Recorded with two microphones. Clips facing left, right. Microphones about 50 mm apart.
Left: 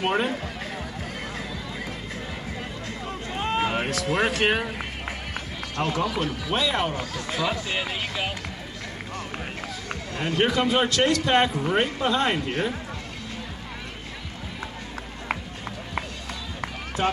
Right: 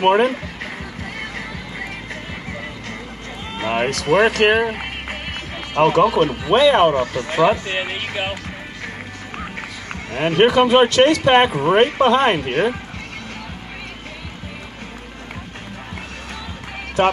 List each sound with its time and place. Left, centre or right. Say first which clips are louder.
0.0 s speech: right 9 dB; right
3.6 s run: right 6 dB; right
3.9 s speech: right 8 dB; right
4.6 s speech: right 9 dB; right
5.3 s run: right 7 dB; right
6.5 s speech: right 13 dB; right
10.1 s speech: right 9 dB; right